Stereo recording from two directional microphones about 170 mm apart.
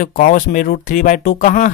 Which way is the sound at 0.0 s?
55° left (ahead or behind).